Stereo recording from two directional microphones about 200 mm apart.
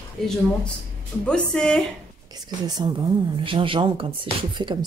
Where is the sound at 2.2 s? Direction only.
20° right (ahead or behind).